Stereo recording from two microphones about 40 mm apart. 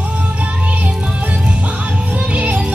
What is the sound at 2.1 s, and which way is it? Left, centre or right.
Music, right.